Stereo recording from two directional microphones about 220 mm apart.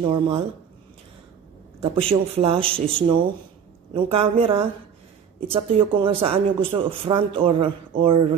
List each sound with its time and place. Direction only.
0.0 s speech: 25° right (ahead or behind)
1.8 s speech: 25° right (ahead or behind)